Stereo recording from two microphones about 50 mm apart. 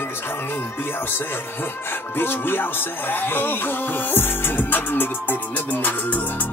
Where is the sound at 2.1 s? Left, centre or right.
Left.